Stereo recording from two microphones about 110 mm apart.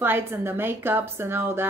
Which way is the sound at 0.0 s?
20° right (ahead or behind).